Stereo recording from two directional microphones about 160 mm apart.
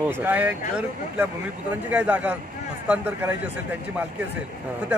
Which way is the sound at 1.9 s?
10° right (ahead or behind).